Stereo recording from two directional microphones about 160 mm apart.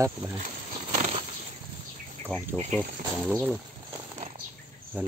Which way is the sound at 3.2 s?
10° right (ahead or behind).